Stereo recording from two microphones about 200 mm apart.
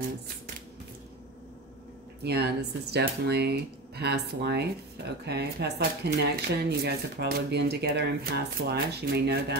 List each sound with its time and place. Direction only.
2.2 s speech: 55° right (ahead or behind)